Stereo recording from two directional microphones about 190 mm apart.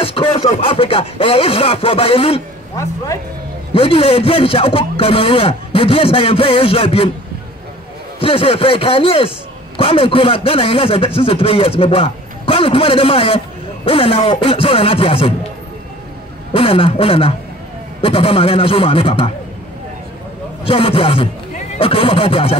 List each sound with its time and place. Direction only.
0.0 s a man's voice: 30° left (ahead or behind)
3.7 s a man's voice: 30° left (ahead or behind)
8.2 s a man's voice: 30° left (ahead or behind)
16.5 s a man's voice: 30° left (ahead or behind)
20.6 s a man's voice: 30° left (ahead or behind)